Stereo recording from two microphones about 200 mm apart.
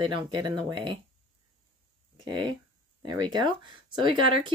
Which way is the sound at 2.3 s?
25° right (ahead or behind).